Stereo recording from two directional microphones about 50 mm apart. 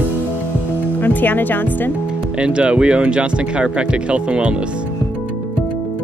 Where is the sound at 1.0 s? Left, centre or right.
Left.